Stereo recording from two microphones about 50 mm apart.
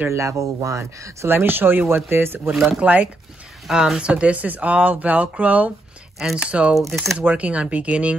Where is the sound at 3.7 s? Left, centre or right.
Centre.